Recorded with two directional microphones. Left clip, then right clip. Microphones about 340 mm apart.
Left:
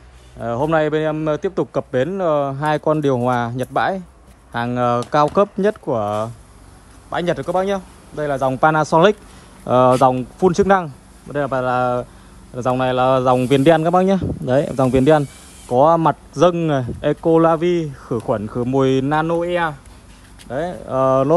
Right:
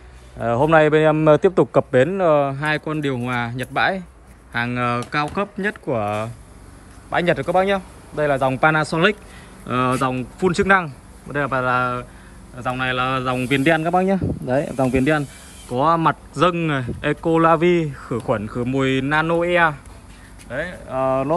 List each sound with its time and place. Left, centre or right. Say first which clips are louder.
0.4 s a man's voice: right 3 dB; centre
14.5 s speech: left 4 dB; right
15.7 s speech: left 4 dB; centre
20.9 s speech: left 5 dB; right